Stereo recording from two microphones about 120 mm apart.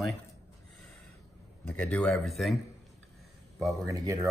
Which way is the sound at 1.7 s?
10° left (ahead or behind).